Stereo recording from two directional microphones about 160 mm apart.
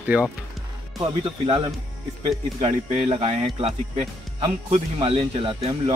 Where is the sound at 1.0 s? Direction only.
30° right (ahead or behind).